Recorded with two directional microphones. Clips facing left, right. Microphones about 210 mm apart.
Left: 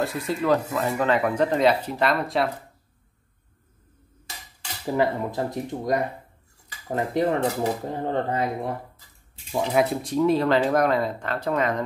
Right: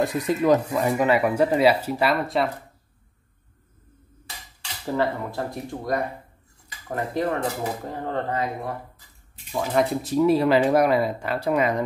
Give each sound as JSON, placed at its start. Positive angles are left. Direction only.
{"t": 0.0, "sound": "speech", "side_deg": -15}
{"t": 4.8, "sound": "speech", "side_deg": 15}
{"t": 9.7, "sound": "speech", "side_deg": 0}